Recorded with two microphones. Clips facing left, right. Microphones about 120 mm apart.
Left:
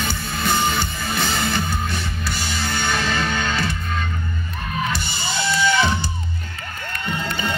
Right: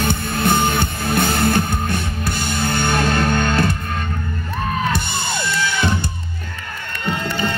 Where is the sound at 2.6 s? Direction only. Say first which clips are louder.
Right 5 dB; 55° right (ahead or behind).